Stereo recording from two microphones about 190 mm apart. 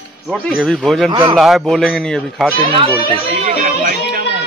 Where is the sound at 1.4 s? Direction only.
Centre (ahead or behind).